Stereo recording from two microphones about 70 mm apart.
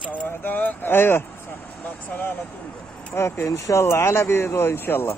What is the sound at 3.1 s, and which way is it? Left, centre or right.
Speech, left.